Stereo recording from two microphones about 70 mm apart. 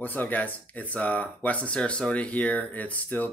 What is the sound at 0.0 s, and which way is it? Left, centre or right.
Speech, left.